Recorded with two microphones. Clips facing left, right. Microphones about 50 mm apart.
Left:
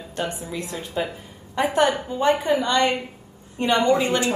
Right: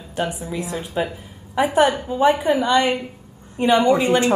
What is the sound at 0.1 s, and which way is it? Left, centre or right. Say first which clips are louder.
A woman's voice: right 4 dB; centre.